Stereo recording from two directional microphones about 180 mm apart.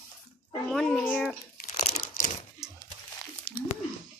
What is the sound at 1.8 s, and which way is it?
Crumpling, 45° left (ahead or behind).